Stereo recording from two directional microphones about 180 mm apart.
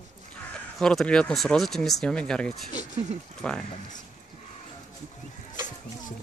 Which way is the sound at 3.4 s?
5° left (ahead or behind).